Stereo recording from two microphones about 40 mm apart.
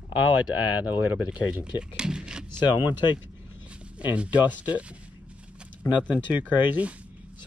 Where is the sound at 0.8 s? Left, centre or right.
Right.